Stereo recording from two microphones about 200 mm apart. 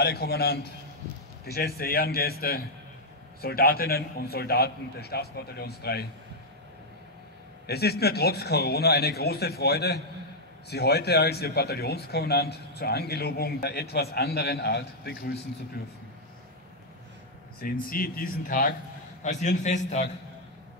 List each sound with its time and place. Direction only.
0.0 s speech: 50° left (ahead or behind)
7.6 s speech: 55° left (ahead or behind)
17.6 s a man's voice: 45° left (ahead or behind)